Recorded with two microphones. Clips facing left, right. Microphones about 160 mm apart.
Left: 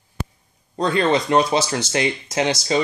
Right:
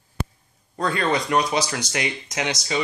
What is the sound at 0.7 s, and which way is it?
Speech, 25° left (ahead or behind).